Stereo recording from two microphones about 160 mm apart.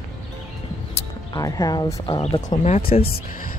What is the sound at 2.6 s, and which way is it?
Speech, 45° left (ahead or behind).